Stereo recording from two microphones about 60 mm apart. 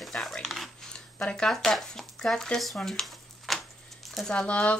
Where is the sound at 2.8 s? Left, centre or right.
Centre.